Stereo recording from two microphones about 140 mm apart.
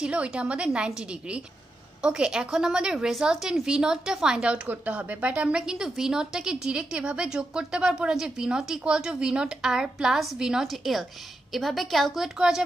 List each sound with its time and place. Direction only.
0.0 s a woman's voice: 10° right (ahead or behind)